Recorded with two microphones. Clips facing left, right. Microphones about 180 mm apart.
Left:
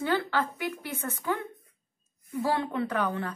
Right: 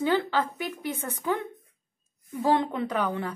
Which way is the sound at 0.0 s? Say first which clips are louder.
Right 3 dB; 15° right (ahead or behind).